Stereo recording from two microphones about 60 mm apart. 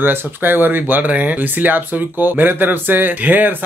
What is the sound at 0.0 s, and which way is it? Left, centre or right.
Speech, right.